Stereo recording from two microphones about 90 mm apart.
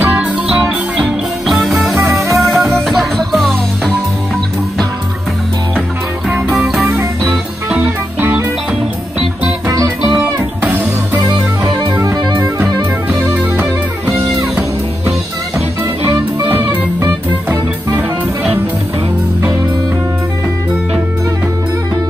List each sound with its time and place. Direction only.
0.0 s music: 20° right (ahead or behind)
0.6 s music: 10° right (ahead or behind)
2.0 s music: 35° right (ahead or behind)
2.3 s music: centre (ahead or behind)
6.2 s music: 5° right (ahead or behind)
7.7 s music: 15° right (ahead or behind)
10.6 s music: 20° right (ahead or behind)
12.0 s music: 40° right (ahead or behind)
13.3 s music: 15° right (ahead or behind)
16.1 s music: 20° right (ahead or behind)